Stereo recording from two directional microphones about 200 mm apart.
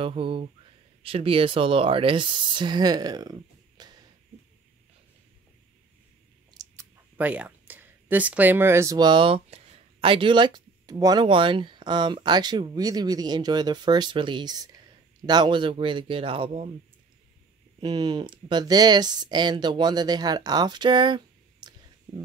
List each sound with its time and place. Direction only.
0.0 s speech: 25° right (ahead or behind)
6.5 s a sound: 20° right (ahead or behind)
7.2 s speech: 10° right (ahead or behind); by 16.6 s 25° right (ahead or behind)
17.7 s speech: 20° right (ahead or behind)